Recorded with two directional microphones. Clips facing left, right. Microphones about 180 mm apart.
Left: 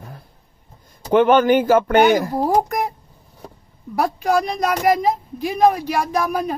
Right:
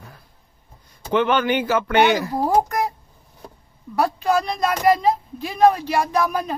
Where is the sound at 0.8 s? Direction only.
45° left (ahead or behind).